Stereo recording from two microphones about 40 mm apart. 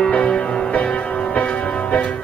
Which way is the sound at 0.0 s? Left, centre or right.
Left.